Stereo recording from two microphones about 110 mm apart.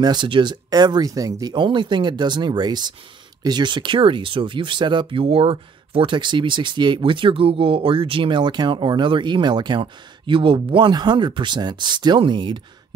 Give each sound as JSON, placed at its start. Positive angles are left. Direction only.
{"t": 0.0, "sound": "speech", "side_deg": -45}